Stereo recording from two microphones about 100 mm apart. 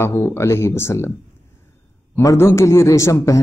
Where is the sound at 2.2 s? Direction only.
30° left (ahead or behind).